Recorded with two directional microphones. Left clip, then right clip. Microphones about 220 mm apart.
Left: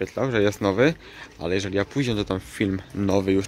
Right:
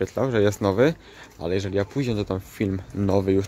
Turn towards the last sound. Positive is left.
turn(degrees=-10)  # may be behind; listen again after turning